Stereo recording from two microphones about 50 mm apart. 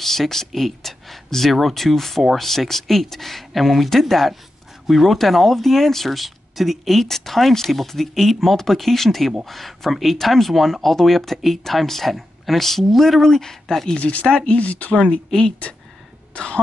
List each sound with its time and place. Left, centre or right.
0.0 s speech: centre
13.9 s speech: left